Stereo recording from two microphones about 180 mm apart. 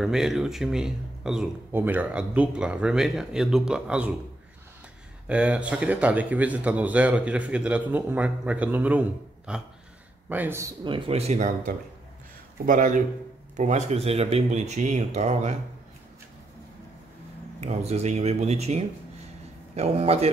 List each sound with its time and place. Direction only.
0.0 s speech: centre (ahead or behind)
5.3 s speech: 5° right (ahead or behind)
10.8 s a man's voice: 30° right (ahead or behind)
17.6 s speech: 35° right (ahead or behind)